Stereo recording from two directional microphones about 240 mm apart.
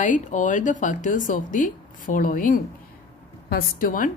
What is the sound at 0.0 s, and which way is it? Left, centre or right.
Speech, left.